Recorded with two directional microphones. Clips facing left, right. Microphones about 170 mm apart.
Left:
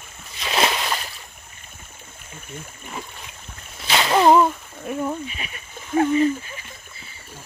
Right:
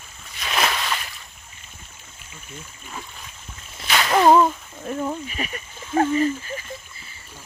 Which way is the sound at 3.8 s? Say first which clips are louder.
Left 1 dB; 25° left (ahead or behind).